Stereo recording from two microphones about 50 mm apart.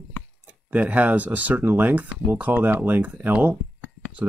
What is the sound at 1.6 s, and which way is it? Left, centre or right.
Speech, right.